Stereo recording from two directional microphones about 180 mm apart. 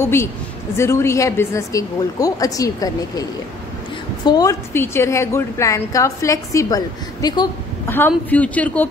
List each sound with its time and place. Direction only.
0.0 s a woman's voice: 15° left (ahead or behind)
8.3 s a woman's voice: 10° left (ahead or behind)